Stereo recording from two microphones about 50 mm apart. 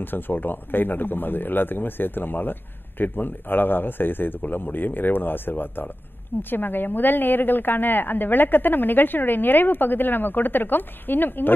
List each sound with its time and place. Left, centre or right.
0.0 s a man's voice: left